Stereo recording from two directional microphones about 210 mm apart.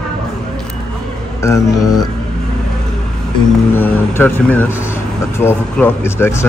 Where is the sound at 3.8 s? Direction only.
10° left (ahead or behind).